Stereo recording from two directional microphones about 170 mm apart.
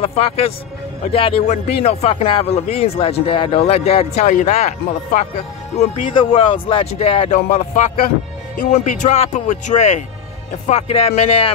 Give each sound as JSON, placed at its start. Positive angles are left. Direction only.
{"t": 0.0, "sound": "speech", "side_deg": 35}
{"t": 5.8, "sound": "speech", "side_deg": 30}
{"t": 7.3, "sound": "speech", "side_deg": 45}